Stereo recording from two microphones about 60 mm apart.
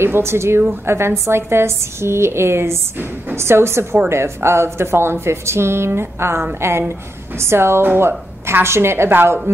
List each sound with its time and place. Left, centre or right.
0.0 s a woman's voice: right